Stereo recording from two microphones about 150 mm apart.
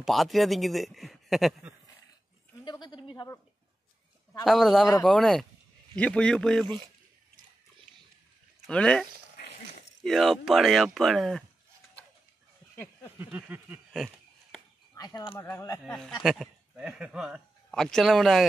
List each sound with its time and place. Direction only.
0.0 s a man's voice: centre (ahead or behind)
2.6 s a sound: 25° left (ahead or behind)
4.5 s a man's voice: centre (ahead or behind)
8.6 s speech: 5° left (ahead or behind)
10.0 s a man's voice: centre (ahead or behind)
13.2 s a sound: 10° right (ahead or behind)
13.9 s a sound: centre (ahead or behind)
15.0 s speech: 25° left (ahead or behind)
15.8 s a man's voice: centre (ahead or behind)